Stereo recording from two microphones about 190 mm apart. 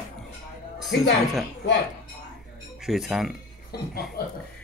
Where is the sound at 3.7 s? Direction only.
55° left (ahead or behind).